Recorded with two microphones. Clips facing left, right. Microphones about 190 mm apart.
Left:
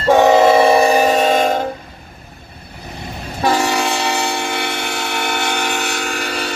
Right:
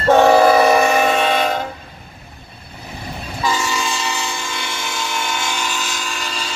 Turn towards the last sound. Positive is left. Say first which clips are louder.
# left 5 dB
turn(degrees=60)  # may be behind; listen again after turning